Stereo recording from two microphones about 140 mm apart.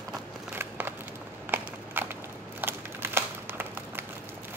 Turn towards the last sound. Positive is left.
turn(degrees=-15)  # may be behind; listen again after turning